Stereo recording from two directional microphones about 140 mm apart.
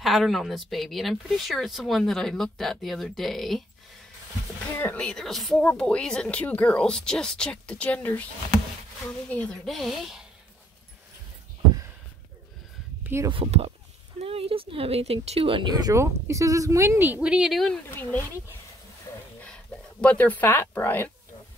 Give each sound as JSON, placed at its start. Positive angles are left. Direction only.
{"t": 0.0, "sound": "speech", "side_deg": 0}
{"t": 4.7, "sound": "speech", "side_deg": 15}
{"t": 5.0, "sound": "speech", "side_deg": 5}
{"t": 9.3, "sound": "speech", "side_deg": 10}
{"t": 13.0, "sound": "a sound", "side_deg": -20}
{"t": 13.3, "sound": "speech", "side_deg": -45}
{"t": 15.9, "sound": "a woman's voice", "side_deg": -20}
{"t": 19.4, "sound": "speech", "side_deg": 10}